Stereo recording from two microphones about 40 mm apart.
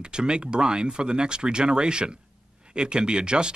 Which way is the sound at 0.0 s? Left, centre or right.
Right.